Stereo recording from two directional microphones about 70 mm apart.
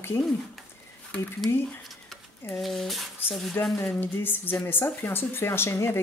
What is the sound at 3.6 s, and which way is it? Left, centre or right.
Speech, left.